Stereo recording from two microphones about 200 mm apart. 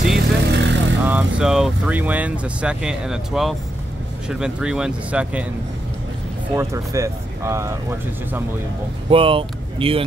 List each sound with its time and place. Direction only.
0.1 s vehicle: 60° right (ahead or behind)
1.0 s speech: 5° right (ahead or behind)
6.5 s speech: 15° right (ahead or behind)
9.1 s speech: 25° right (ahead or behind)